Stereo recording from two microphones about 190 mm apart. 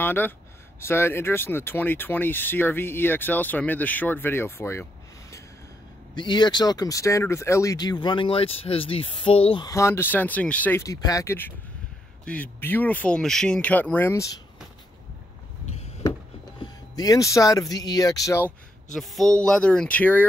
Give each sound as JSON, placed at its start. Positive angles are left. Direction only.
{"t": 0.0, "sound": "speech", "side_deg": 10}
{"t": 6.1, "sound": "speech", "side_deg": 25}
{"t": 16.6, "sound": "speech", "side_deg": 20}
{"t": 18.9, "sound": "speech", "side_deg": 0}